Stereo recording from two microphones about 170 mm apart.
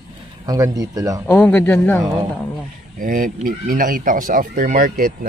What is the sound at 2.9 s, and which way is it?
Speech, 55° right (ahead or behind).